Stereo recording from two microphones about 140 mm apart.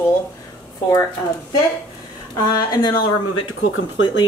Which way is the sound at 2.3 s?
30° left (ahead or behind).